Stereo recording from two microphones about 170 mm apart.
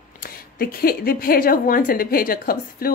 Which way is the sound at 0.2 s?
60° left (ahead or behind).